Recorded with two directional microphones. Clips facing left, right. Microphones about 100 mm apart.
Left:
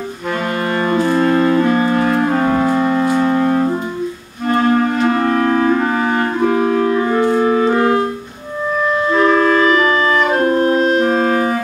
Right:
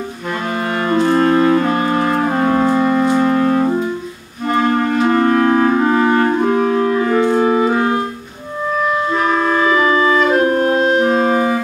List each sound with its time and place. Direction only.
0.8 s clarinet: centre (ahead or behind)
1.6 s music: centre (ahead or behind)
4.5 s clarinet: centre (ahead or behind)
6.4 s music: 5° left (ahead or behind)
7.3 s music: 10° right (ahead or behind)
9.2 s clarinet: 10° right (ahead or behind)